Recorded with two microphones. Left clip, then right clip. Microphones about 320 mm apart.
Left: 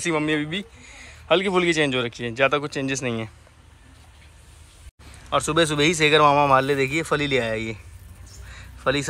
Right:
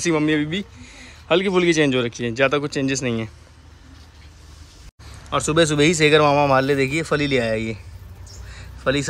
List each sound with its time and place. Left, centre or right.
0.0 s speech: centre
5.3 s speech: centre
8.5 s a sound: centre